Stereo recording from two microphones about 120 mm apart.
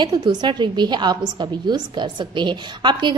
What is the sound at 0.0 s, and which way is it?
A woman's voice, 35° right (ahead or behind).